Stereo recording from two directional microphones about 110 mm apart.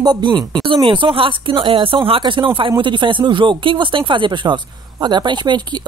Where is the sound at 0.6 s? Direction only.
50° right (ahead or behind).